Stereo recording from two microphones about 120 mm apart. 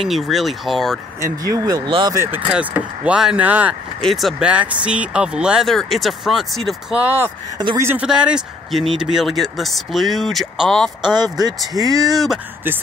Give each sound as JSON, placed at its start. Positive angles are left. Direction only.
{"t": 0.0, "sound": "speech", "side_deg": 0}
{"t": 1.2, "sound": "speech", "side_deg": -30}
{"t": 1.9, "sound": "speech", "side_deg": -40}
{"t": 2.1, "sound": "speech", "side_deg": -15}
{"t": 4.0, "sound": "speech", "side_deg": 0}
{"t": 7.0, "sound": "speech", "side_deg": -15}
{"t": 7.5, "sound": "speech", "side_deg": -35}
{"t": 7.8, "sound": "speech", "side_deg": -15}
{"t": 8.1, "sound": "speech", "side_deg": -5}
{"t": 11.7, "sound": "speech", "side_deg": -30}